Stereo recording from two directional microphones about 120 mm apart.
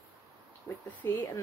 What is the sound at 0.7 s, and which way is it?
Speech, 25° left (ahead or behind).